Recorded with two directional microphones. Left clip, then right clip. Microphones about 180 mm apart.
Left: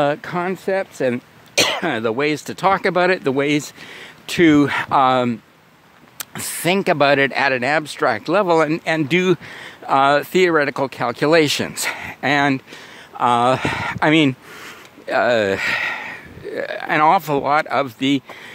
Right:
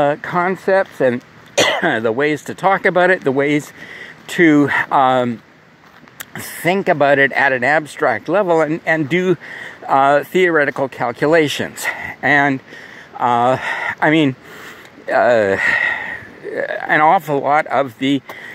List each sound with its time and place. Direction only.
0.0 s speech: 30° left (ahead or behind)